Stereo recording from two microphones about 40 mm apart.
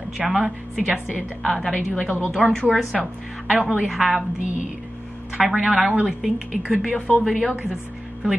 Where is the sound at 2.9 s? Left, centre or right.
Centre.